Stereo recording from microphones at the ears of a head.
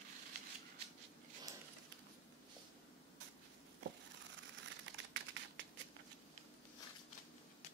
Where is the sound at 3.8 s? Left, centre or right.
Right.